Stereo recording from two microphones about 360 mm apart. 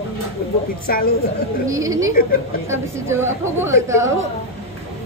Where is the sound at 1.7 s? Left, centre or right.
Centre.